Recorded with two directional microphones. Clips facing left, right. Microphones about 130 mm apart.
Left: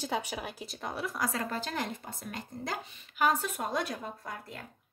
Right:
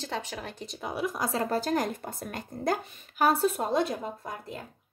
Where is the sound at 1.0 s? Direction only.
25° right (ahead or behind).